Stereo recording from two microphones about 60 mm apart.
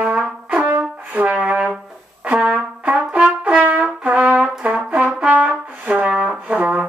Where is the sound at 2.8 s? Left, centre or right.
Right.